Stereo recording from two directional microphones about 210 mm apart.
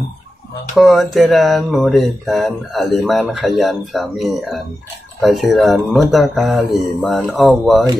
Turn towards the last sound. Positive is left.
turn(degrees=0)  # may be behind; listen again after turning